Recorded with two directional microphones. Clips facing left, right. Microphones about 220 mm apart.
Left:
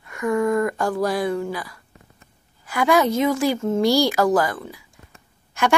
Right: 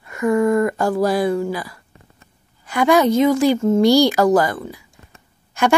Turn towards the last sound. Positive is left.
turn(degrees=0)  # may be behind; listen again after turning